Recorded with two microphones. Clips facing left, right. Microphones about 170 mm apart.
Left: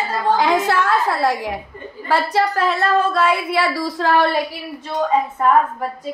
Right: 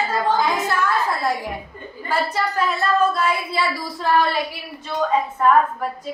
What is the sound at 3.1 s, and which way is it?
Speech, 80° left.